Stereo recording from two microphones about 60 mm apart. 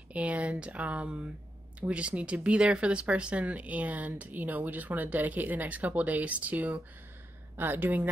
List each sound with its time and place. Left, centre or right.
0.1 s speech: right